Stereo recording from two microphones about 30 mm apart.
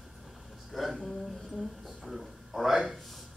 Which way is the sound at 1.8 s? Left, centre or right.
Centre.